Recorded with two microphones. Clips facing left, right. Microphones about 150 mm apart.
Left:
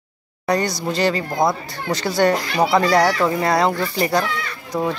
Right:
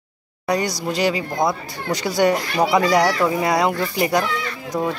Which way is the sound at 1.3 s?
10° left (ahead or behind).